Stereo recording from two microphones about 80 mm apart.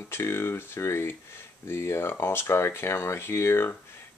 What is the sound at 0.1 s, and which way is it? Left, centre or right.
Speech, left.